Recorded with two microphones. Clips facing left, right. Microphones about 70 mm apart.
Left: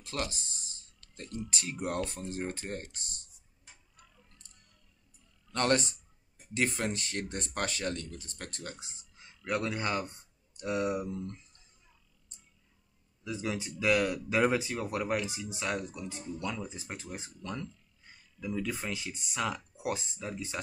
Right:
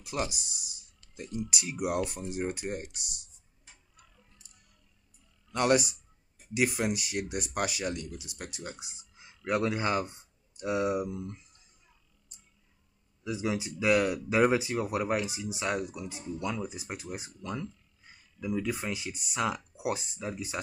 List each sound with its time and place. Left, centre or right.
0.0 s speech: centre
5.5 s speech: centre
13.2 s speech: centre